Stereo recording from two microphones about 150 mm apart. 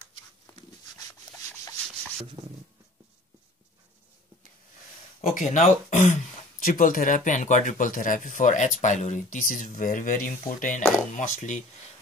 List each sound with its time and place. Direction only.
5.3 s speech: 55° left (ahead or behind)
6.6 s speech: 65° left (ahead or behind)
11.1 s speech: 55° left (ahead or behind)